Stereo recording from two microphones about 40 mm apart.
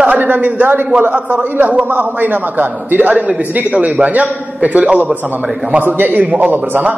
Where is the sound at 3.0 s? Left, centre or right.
Right.